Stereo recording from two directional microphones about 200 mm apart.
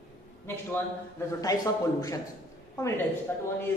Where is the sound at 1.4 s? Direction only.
15° left (ahead or behind).